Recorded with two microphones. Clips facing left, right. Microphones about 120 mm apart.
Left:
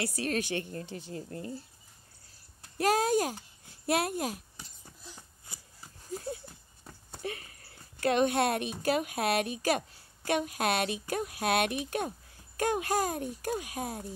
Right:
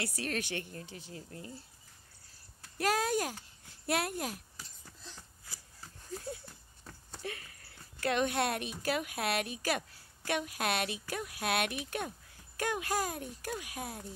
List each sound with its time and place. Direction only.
0.4 s a woman's voice: 20° left (ahead or behind)
0.8 s speech: 65° left (ahead or behind)
1.1 s speech: 45° left (ahead or behind)
2.6 s a sound: 20° left (ahead or behind)
7.2 s a sound: 25° left (ahead or behind)
7.6 s dog: 40° left (ahead or behind)
8.1 s a woman's voice: 25° left (ahead or behind)